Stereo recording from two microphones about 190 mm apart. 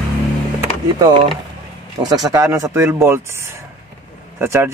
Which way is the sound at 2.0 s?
20° right (ahead or behind).